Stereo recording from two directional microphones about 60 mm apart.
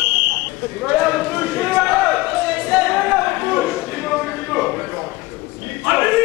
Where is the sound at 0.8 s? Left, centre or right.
Centre.